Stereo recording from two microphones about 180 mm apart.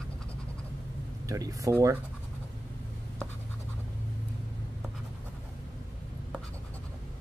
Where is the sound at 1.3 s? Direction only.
20° right (ahead or behind).